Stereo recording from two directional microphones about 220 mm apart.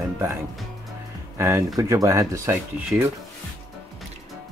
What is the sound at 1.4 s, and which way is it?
Speech, 10° right (ahead or behind).